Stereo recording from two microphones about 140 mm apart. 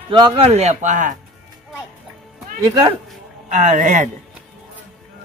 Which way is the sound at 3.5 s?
60° right (ahead or behind).